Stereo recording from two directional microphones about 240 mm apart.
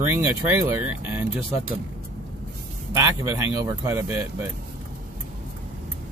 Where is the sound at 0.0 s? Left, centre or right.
Centre.